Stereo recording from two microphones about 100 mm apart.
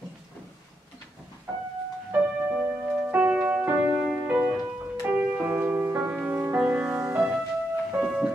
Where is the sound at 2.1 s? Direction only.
15° right (ahead or behind).